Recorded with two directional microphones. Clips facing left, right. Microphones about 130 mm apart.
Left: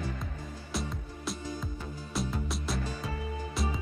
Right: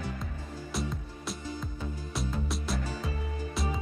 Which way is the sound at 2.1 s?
Centre (ahead or behind).